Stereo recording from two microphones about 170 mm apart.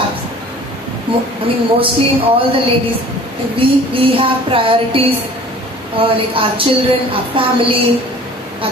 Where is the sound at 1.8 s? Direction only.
30° right (ahead or behind).